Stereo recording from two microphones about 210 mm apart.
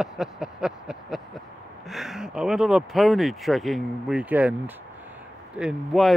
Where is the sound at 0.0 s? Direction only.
Centre (ahead or behind).